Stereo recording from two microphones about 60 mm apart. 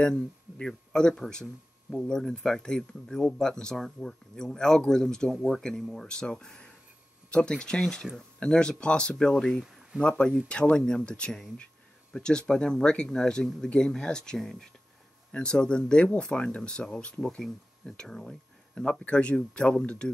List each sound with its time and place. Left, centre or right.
0.0 s speech: centre
10.0 s speech: centre